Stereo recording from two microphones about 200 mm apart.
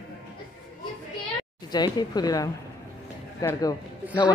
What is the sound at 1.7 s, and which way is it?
A man's voice, 20° left (ahead or behind).